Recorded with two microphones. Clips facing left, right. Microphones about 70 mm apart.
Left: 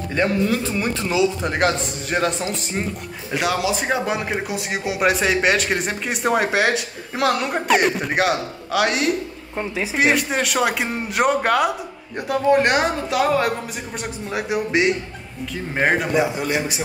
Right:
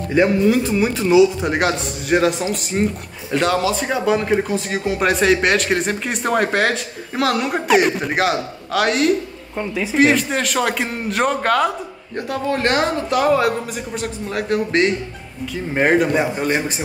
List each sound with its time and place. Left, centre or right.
0.1 s speech: centre
2.8 s speech: centre
3.8 s a man's voice: centre
4.1 s a man's voice: centre
16.2 s a man's voice: right